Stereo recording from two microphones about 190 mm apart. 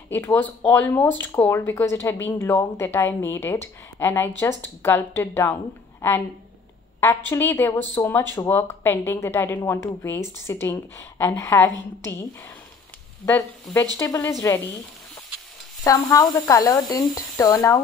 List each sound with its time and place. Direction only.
0.1 s speech: 10° left (ahead or behind)
15.8 s speech: 15° left (ahead or behind)